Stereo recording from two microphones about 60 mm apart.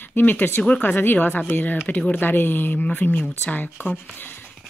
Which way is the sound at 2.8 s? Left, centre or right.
Left.